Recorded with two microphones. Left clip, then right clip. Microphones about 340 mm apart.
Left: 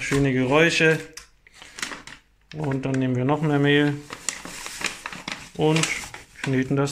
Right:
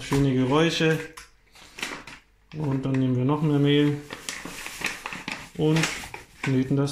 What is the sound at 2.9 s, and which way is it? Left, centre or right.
Speech, left.